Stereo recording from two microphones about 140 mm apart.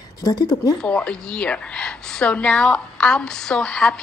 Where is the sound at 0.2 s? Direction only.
30° left (ahead or behind).